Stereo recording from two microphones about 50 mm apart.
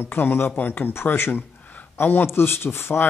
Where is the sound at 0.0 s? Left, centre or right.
Left.